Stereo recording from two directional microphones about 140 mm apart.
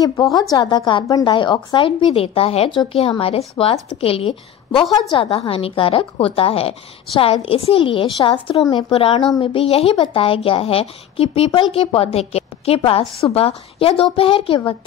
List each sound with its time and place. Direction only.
0.0 s a woman's voice: 30° left (ahead or behind)